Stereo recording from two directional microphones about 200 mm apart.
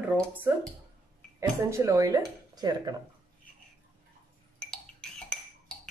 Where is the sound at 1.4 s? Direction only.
15° right (ahead or behind).